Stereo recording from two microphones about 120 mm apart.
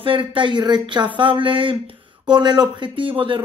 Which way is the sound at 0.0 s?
45° right (ahead or behind).